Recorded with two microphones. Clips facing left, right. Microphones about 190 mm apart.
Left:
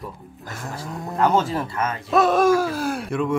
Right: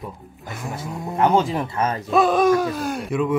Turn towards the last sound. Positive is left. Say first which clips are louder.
# right 1 dB
turn(degrees=0)  # may be behind; listen again after turning